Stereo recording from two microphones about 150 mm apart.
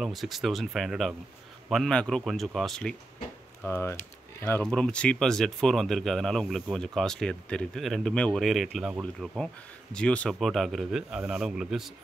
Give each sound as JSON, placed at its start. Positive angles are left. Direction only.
{"t": 0.0, "sound": "speech", "side_deg": 0}
{"t": 3.6, "sound": "speech", "side_deg": 15}
{"t": 9.9, "sound": "speech", "side_deg": 5}